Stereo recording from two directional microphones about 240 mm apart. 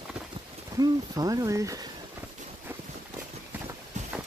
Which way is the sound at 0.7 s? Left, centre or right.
Centre.